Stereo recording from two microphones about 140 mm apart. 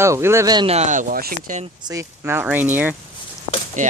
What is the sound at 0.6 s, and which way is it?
Speech, 50° right (ahead or behind).